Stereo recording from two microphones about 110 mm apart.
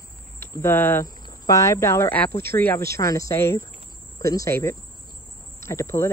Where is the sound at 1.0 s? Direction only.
30° left (ahead or behind).